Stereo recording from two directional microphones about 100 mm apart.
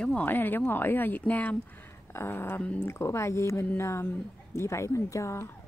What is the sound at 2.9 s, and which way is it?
Speech, 30° left (ahead or behind).